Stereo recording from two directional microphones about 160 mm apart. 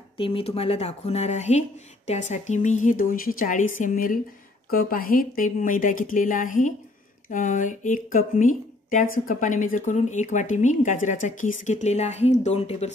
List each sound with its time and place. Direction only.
0.2 s a woman's voice: 35° left (ahead or behind)